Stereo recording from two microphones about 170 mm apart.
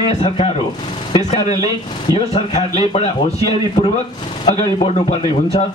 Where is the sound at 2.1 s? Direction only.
40° left (ahead or behind).